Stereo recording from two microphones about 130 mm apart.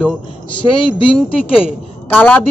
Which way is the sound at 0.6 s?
40° left (ahead or behind).